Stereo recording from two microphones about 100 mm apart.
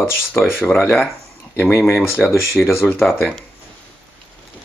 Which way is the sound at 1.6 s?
25° left (ahead or behind).